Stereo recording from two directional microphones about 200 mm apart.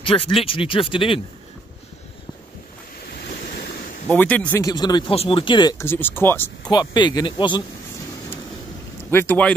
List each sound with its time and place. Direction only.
0.0 s speech: 25° left (ahead or behind)
4.1 s speech: 5° left (ahead or behind)
6.7 s speech: 20° left (ahead or behind)
9.1 s speech: 10° left (ahead or behind)